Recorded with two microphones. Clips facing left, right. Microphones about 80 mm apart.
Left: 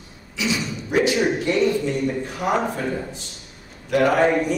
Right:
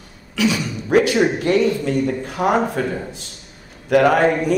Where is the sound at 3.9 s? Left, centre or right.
Right.